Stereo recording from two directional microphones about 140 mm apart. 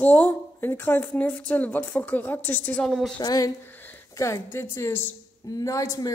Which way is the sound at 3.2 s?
25° left (ahead or behind).